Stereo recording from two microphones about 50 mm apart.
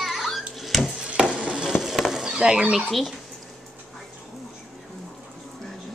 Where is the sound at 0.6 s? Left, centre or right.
Centre.